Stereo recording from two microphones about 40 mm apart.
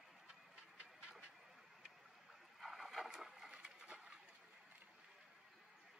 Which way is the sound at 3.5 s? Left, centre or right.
Right.